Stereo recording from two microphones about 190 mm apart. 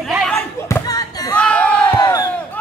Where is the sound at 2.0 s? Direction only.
20° left (ahead or behind).